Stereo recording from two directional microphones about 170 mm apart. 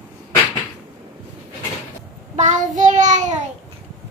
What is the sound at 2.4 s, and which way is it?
Child singing, 45° right (ahead or behind).